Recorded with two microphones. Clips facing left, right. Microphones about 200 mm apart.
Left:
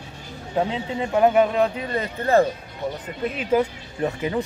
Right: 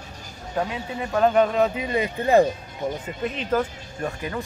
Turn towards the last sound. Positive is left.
turn(degrees=20)  # may be behind; listen again after turning